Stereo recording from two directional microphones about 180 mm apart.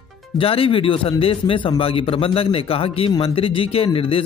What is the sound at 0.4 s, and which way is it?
Speech, 30° left (ahead or behind).